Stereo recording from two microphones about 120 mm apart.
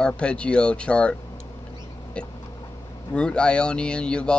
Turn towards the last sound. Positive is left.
turn(degrees=10)  # may be behind; listen again after turning